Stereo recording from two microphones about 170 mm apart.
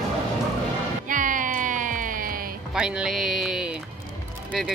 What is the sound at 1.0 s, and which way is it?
Music, 50° right (ahead or behind).